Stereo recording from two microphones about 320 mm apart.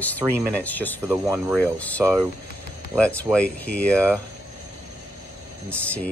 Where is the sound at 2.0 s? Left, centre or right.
Centre.